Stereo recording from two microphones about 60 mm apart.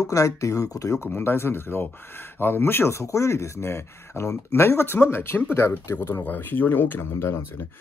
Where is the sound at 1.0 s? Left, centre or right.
Left.